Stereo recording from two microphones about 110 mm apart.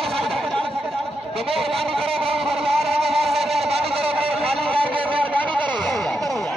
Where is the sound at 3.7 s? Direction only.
60° right (ahead or behind).